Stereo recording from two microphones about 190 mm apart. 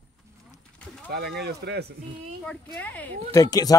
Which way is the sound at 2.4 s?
10° left (ahead or behind).